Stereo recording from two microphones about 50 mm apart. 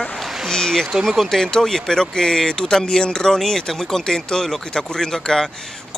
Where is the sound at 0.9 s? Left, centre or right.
Centre.